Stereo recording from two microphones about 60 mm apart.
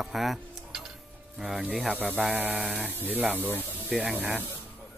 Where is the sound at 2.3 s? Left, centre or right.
Right.